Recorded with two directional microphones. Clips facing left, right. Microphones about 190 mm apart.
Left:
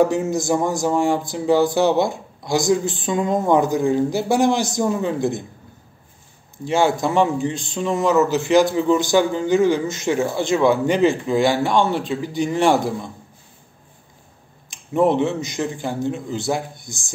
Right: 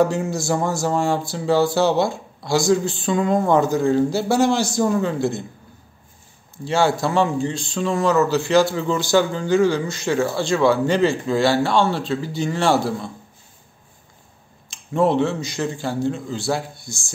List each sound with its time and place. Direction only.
0.0 s speech: 20° left (ahead or behind)
6.5 s speech: 15° left (ahead or behind)
14.7 s speech: 15° left (ahead or behind)